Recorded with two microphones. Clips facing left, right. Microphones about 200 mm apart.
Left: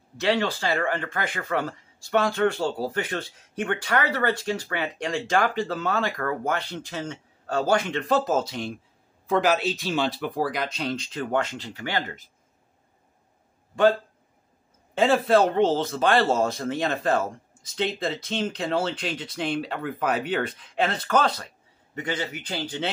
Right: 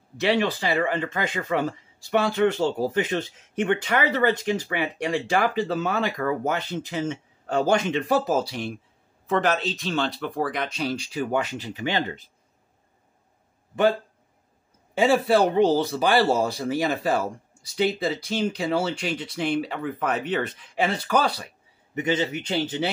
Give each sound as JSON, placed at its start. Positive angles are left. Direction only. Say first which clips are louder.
{"t": 0.2, "sound": "speech", "louder": "right 1 dB", "side_deg": -15}
{"t": 15.0, "sound": "speech", "louder": "even", "side_deg": -10}
{"t": 21.9, "sound": "a man's voice", "louder": "right 6 dB", "side_deg": -20}